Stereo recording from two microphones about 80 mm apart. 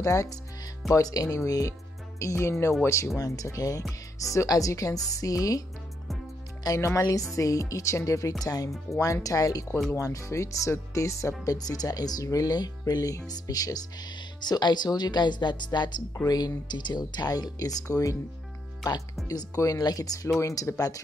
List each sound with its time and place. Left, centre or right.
0.0 s speech: left
6.6 s speech: left
16.3 s speech: left
19.2 s speech: left
20.3 s speech: left